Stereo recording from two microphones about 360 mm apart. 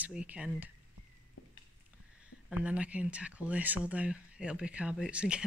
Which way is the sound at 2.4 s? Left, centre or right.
Centre.